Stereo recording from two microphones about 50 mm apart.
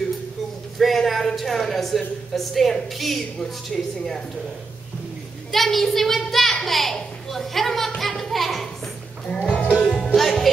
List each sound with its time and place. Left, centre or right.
0.7 s speech: centre
5.5 s a child's voice: centre
8.0 s music: centre
9.3 s music: centre